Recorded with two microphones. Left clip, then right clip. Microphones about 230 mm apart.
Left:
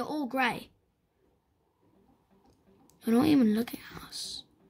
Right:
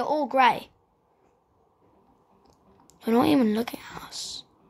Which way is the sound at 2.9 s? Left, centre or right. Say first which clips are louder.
Right 4 dB; left.